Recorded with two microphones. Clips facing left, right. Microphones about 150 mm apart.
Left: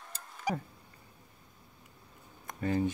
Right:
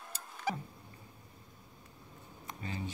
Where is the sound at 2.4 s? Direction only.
55° left (ahead or behind).